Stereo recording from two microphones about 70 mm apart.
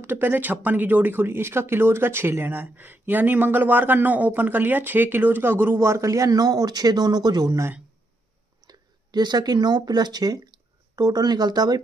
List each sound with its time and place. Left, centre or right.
0.0 s speech: right
8.6 s speech: right